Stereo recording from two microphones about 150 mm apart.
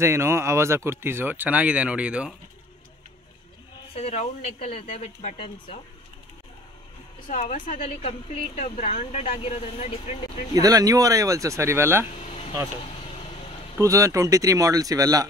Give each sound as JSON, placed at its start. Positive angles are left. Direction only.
{"t": 0.0, "sound": "speech", "side_deg": -15}
{"t": 3.9, "sound": "speech", "side_deg": 45}
{"t": 7.2, "sound": "a woman's voice", "side_deg": 55}
{"t": 7.8, "sound": "speech", "side_deg": 45}
{"t": 10.6, "sound": "speech", "side_deg": -25}
{"t": 12.2, "sound": "a sound", "side_deg": 45}
{"t": 13.0, "sound": "vehicle", "side_deg": 40}
{"t": 13.7, "sound": "speech", "side_deg": -20}